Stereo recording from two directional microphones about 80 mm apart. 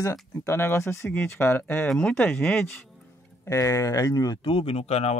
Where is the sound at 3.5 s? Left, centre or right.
Left.